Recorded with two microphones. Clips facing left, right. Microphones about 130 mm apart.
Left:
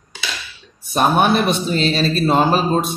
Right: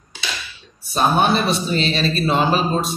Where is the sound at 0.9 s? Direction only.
55° left (ahead or behind).